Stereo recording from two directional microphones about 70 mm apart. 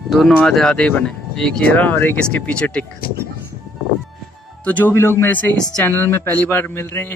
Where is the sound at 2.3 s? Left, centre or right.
Centre.